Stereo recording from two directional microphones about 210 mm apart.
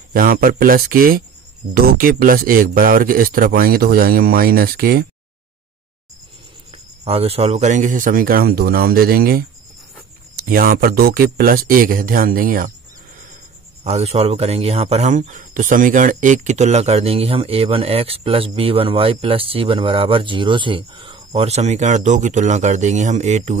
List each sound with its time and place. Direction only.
0.1 s speech: 45° right (ahead or behind)
7.1 s speech: 30° right (ahead or behind)
13.8 s speech: 30° right (ahead or behind)